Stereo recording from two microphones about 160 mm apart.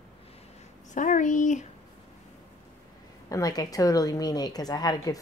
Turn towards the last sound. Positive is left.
turn(degrees=25)  # may be behind; listen again after turning